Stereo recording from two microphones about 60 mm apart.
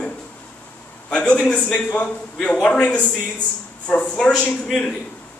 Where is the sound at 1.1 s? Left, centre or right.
Centre.